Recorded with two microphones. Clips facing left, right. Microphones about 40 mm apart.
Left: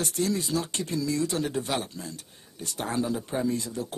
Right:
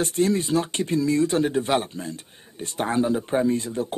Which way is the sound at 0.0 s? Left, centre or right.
Right.